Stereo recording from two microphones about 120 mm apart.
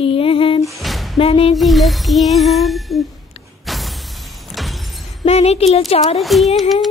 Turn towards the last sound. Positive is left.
turn(degrees=0)  # may be behind; listen again after turning